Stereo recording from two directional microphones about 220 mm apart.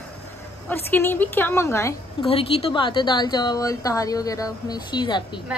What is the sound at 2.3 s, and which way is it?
A woman's voice, 25° left (ahead or behind).